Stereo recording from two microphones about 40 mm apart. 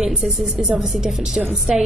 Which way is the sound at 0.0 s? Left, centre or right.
Centre.